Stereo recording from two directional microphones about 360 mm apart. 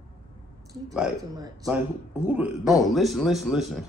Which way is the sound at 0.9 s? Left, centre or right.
Centre.